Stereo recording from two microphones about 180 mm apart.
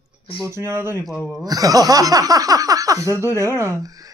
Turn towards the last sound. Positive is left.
turn(degrees=-20)  # may be behind; listen again after turning